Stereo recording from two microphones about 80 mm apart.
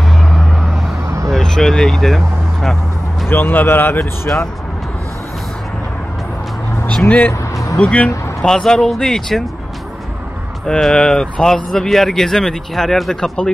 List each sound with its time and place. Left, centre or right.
0.0 s vehicle: centre
3.3 s speech: left
7.1 s speech: centre
10.8 s speech: centre